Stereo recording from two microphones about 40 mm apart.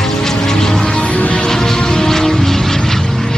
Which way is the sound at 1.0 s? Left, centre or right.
Left.